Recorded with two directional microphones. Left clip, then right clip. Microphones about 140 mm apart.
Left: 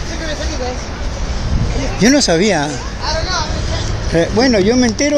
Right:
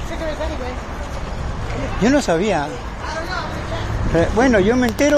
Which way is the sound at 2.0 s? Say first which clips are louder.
Left 5 dB; 50° left (ahead or behind).